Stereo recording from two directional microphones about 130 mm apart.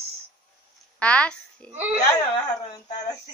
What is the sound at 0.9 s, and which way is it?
Speech, 10° left (ahead or behind).